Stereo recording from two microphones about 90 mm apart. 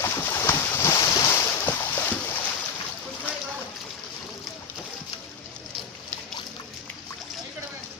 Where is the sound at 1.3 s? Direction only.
25° left (ahead or behind).